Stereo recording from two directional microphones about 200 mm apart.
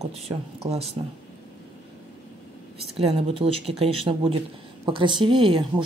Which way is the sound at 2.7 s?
30° right (ahead or behind).